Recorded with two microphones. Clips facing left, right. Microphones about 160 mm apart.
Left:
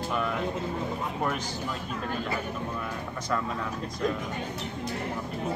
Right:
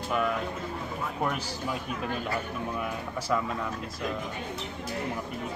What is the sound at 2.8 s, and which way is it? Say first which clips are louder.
Speech: right 2 dB; 5° right (ahead or behind).